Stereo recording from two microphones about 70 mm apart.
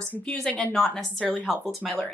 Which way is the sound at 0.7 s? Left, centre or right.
Centre.